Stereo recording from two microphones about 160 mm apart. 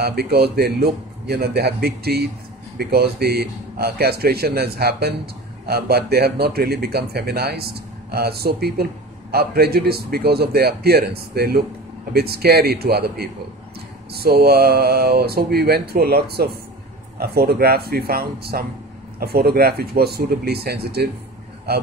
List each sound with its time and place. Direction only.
0.0 s a man's voice: 80° right